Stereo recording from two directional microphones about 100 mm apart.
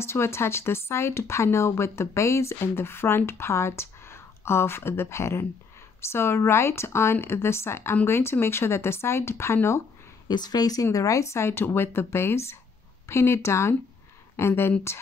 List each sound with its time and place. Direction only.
0.0 s speech: 25° left (ahead or behind)
10.2 s speech: 45° left (ahead or behind); by 15.0 s 25° left (ahead or behind)